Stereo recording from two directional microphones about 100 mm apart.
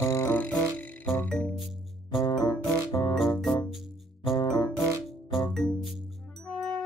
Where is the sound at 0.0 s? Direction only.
25° left (ahead or behind).